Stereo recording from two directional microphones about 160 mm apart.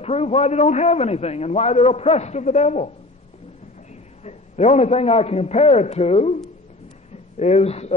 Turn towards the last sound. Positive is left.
turn(degrees=40)  # may be behind; listen again after turning